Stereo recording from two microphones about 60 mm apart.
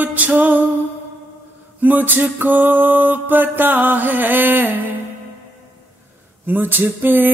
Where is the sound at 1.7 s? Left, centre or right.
Right.